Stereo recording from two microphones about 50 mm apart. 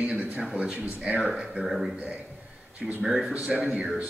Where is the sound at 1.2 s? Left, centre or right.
Centre.